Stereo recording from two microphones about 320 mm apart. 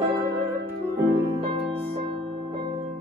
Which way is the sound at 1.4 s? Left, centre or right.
Centre.